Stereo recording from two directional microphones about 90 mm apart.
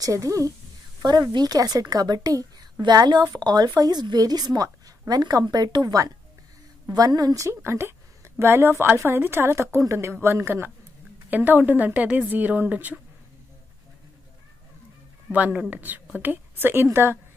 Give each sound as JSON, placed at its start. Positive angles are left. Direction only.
{"t": 0.0, "sound": "a woman's voice", "side_deg": -40}
{"t": 1.0, "sound": "a woman's voice", "side_deg": -50}
{"t": 15.3, "sound": "a woman's voice", "side_deg": -15}